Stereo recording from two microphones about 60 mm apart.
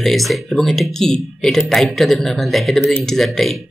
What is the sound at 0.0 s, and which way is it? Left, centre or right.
Speech, centre.